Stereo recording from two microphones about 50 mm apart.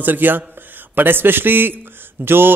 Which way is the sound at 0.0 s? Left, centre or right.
Right.